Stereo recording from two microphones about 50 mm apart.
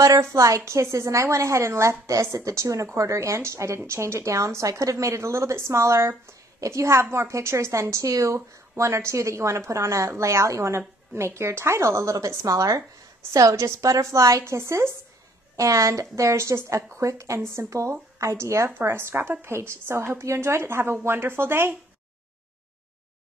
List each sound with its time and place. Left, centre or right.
0.2 s a woman's voice: right
8.7 s a woman's voice: right
11.1 s a woman's voice: right
15.5 s speech: right
17.5 s a woman's voice: right
19.1 s speech: right